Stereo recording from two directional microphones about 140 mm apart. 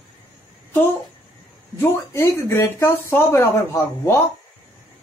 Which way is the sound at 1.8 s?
20° left (ahead or behind).